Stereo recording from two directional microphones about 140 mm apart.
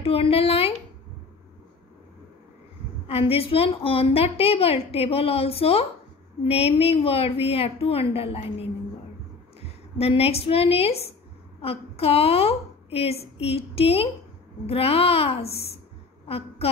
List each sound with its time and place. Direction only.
0.0 s a woman's voice: 45° left (ahead or behind)
3.1 s a woman's voice: 45° left (ahead or behind)